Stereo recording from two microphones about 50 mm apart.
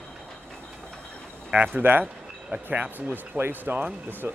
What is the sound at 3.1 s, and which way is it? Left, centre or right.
Speech, right.